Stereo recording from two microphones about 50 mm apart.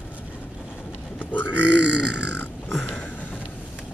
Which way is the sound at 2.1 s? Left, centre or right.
Centre.